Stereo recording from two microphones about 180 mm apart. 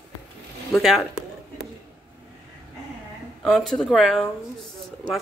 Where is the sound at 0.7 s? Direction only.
Centre (ahead or behind).